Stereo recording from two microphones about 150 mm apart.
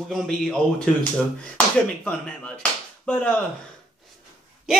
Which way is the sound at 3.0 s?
5° left (ahead or behind).